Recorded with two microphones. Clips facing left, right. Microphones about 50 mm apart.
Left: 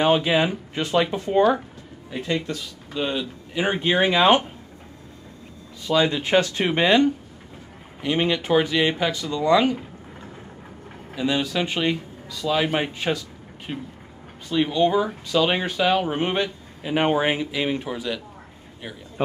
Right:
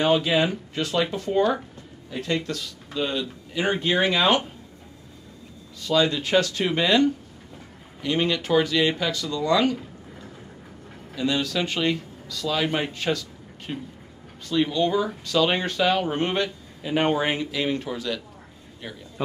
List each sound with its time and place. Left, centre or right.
0.0 s speech: left
5.8 s speech: left
11.1 s speech: centre